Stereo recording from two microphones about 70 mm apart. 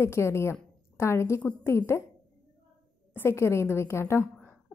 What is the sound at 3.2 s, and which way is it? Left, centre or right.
A woman's voice, left.